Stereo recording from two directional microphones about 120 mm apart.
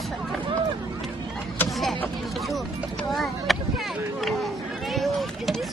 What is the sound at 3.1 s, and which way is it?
Speech, centre (ahead or behind).